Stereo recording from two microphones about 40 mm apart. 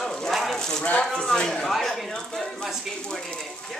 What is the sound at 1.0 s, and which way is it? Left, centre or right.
Speech, centre.